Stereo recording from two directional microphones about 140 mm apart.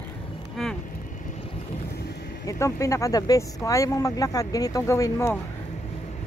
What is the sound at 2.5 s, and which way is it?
Speech, 20° left (ahead or behind).